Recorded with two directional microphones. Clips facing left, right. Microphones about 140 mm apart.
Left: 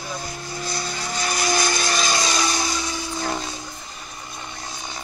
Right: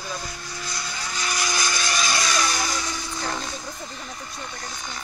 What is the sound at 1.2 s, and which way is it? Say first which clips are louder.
Vehicle: left 5 dB; 40° left (ahead or behind).